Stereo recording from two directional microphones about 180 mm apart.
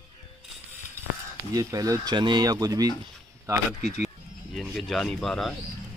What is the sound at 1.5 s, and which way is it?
Speech, 20° right (ahead or behind).